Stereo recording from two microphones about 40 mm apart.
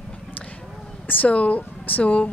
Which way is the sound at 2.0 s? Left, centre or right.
Left.